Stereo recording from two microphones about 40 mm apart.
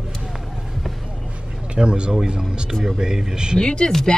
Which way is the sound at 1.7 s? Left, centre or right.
Right.